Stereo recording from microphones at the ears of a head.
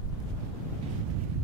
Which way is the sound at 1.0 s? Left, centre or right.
Right.